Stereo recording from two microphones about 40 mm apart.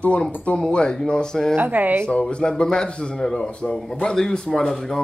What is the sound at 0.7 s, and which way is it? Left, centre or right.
Speech, left.